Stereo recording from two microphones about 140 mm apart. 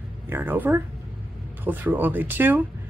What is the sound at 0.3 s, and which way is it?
Speech, 15° right (ahead or behind).